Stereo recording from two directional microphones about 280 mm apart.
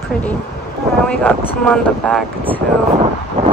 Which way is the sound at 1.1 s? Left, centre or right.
Centre.